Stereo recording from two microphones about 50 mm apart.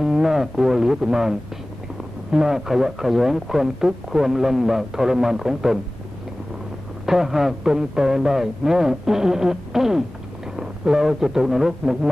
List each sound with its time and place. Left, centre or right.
0.0 s speech: centre
2.3 s speech: centre
7.1 s speech: centre